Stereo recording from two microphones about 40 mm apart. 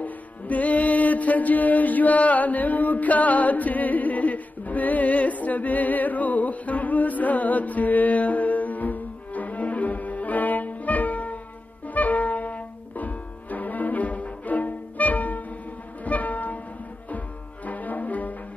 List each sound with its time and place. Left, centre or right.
0.0 s music: left
17.6 s brass instrument: left